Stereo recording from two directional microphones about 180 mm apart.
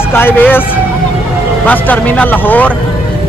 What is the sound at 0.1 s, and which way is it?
Speech, 10° left (ahead or behind).